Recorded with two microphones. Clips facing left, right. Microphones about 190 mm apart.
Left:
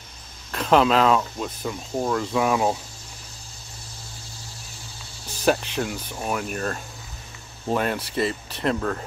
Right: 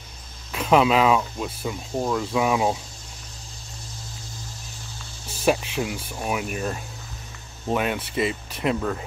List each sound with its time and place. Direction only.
0.5 s speech: 5° right (ahead or behind)
5.3 s speech: 5° right (ahead or behind)